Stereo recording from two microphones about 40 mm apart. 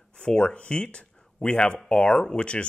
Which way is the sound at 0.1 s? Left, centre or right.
Left.